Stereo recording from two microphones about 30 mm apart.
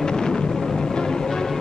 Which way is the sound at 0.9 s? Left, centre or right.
Left.